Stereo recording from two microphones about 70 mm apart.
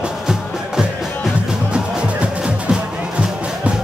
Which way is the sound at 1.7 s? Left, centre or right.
Centre.